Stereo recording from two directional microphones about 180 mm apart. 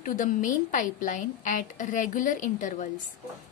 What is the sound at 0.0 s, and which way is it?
A woman's voice, 45° left (ahead or behind).